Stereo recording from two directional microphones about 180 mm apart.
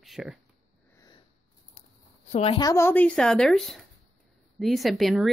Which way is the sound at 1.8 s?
40° left (ahead or behind).